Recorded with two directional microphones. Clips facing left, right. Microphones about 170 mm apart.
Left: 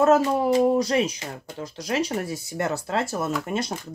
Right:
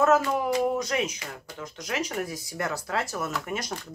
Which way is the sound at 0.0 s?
30° left (ahead or behind).